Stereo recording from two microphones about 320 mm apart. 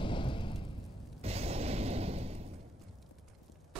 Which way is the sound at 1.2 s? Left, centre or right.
Centre.